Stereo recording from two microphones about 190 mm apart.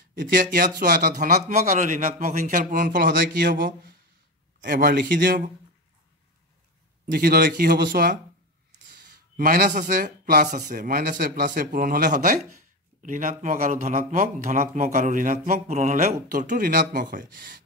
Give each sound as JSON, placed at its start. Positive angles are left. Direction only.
{"t": 0.4, "sound": "speech", "side_deg": -50}
{"t": 3.1, "sound": "speech", "side_deg": -60}
{"t": 7.1, "sound": "speech", "side_deg": -55}
{"t": 9.4, "sound": "speech", "side_deg": -50}